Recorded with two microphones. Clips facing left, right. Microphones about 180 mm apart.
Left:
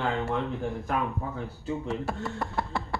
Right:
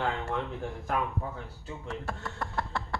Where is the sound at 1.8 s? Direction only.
5° left (ahead or behind).